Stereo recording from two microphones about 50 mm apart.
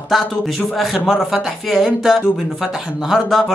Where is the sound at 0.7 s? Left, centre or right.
Centre.